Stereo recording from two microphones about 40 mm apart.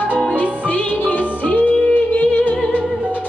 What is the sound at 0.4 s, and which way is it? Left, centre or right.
Music, left.